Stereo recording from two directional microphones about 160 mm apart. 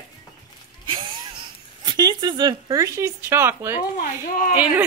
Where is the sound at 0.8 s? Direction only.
30° right (ahead or behind).